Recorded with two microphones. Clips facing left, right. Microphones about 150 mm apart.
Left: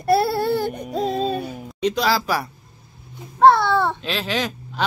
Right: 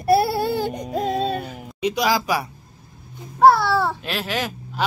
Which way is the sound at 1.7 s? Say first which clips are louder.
Even; 10° right (ahead or behind).